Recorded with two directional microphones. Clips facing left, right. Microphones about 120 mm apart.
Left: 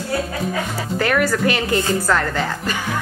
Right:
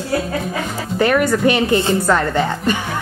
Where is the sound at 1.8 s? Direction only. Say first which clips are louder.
Right 3 dB; 25° right (ahead or behind).